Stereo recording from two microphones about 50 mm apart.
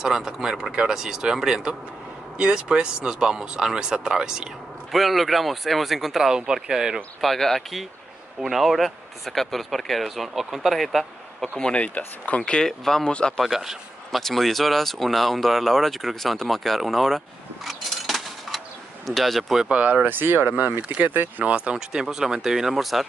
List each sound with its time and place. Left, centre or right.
0.0 s speech: centre
4.9 s speech: centre
7.2 s speech: centre
11.6 s speech: left
12.6 s speech: centre
13.4 s speech: centre
17.6 s a sound: centre
19.0 s speech: centre
19.6 s speech: right
20.0 s speech: right
21.5 s speech: right
21.7 s speech: centre